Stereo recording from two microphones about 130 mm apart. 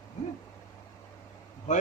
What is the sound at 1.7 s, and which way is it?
Speech, 70° left (ahead or behind).